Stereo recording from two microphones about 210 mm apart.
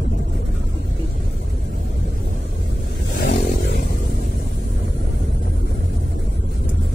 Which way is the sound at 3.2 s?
55° left (ahead or behind).